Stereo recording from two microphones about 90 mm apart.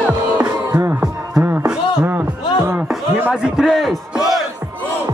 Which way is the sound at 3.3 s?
10° right (ahead or behind).